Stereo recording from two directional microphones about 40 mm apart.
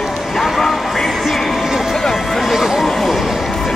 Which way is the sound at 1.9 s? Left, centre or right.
Centre.